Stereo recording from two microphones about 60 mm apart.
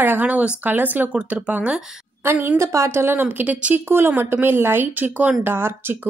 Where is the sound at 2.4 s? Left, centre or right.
Right.